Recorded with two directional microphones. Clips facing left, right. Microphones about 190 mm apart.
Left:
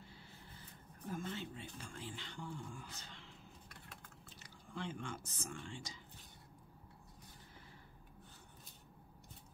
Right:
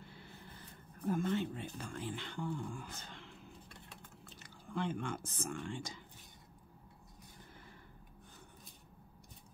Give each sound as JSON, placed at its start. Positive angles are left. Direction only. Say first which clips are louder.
{"t": 0.0, "sound": "a sound", "louder": "right 4 dB", "side_deg": -60}
{"t": 1.0, "sound": "speech", "louder": "right 9 dB", "side_deg": -60}
{"t": 4.4, "sound": "speech", "louder": "right 7 dB", "side_deg": -55}